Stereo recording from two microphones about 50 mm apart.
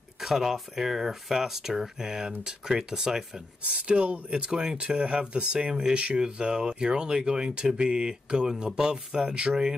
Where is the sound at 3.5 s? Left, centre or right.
Right.